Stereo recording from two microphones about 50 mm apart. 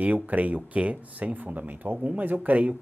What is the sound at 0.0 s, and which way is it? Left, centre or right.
Speech, right.